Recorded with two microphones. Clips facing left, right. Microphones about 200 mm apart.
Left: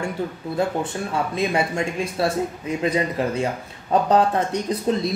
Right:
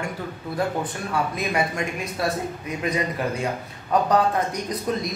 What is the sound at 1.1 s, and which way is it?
Speech, 25° left (ahead or behind).